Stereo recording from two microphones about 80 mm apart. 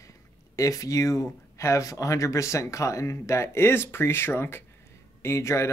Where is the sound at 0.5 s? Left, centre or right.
Left.